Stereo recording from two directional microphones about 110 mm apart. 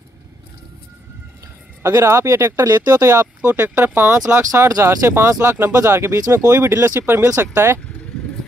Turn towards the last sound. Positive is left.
turn(degrees=-20)  # may be behind; listen again after turning